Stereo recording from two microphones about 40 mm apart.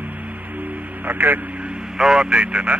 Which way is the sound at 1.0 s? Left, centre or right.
Right.